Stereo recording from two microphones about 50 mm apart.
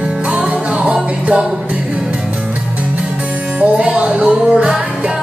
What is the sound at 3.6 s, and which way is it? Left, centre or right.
Music, right.